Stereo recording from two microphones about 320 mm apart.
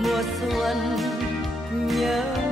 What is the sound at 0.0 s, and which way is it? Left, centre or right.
Music, centre.